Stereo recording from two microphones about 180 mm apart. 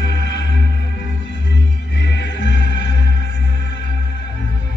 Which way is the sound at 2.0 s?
70° left (ahead or behind).